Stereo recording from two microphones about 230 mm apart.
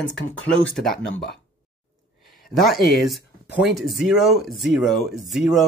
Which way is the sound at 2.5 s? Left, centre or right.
Centre.